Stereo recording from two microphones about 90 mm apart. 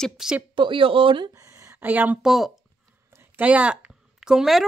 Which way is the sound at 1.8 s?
20° right (ahead or behind).